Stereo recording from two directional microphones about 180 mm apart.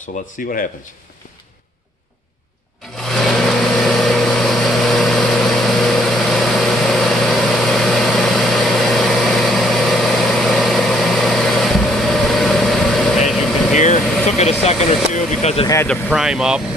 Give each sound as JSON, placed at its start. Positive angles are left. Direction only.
{"t": 0.2, "sound": "speech", "side_deg": 45}
{"t": 3.0, "sound": "vehicle", "side_deg": 0}
{"t": 14.2, "sound": "vehicle", "side_deg": 35}
{"t": 15.1, "sound": "a sound", "side_deg": 40}
{"t": 15.6, "sound": "vehicle", "side_deg": 15}
{"t": 15.9, "sound": "speech", "side_deg": 0}